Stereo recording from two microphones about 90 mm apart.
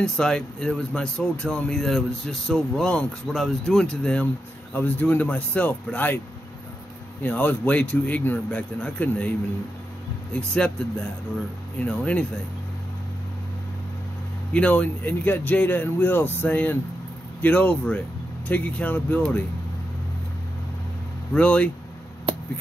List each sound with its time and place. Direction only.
0.0 s a man's voice: 10° left (ahead or behind)
7.2 s a man's voice: 15° left (ahead or behind)
10.3 s a man's voice: 10° left (ahead or behind)
14.5 s a man's voice: 15° left (ahead or behind)
21.3 s a man's voice: 15° left (ahead or behind)